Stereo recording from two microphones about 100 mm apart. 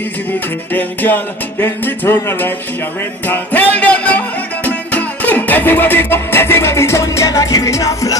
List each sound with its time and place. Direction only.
0.7 s music: 20° left (ahead or behind)